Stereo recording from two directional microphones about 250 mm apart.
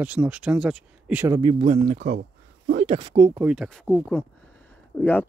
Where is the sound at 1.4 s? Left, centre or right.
Right.